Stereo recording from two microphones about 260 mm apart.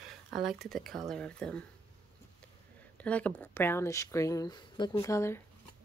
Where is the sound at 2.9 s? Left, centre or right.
Centre.